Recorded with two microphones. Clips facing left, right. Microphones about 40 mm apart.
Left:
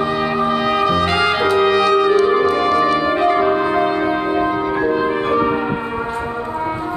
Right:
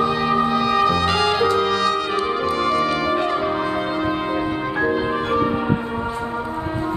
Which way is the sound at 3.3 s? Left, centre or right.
Left.